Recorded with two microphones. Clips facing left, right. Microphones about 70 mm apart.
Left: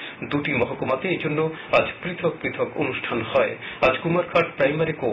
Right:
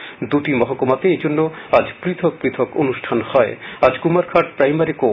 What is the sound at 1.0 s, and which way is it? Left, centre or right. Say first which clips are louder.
Speech: right 8 dB; right.